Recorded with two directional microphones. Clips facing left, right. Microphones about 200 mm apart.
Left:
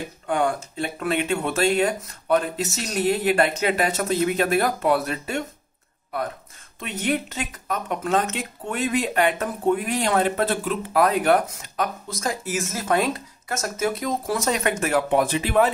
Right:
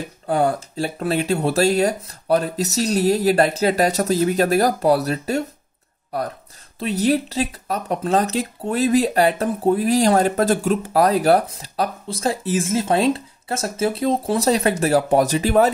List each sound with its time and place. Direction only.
0.3 s speech: 35° right (ahead or behind)
6.8 s speech: 35° right (ahead or behind)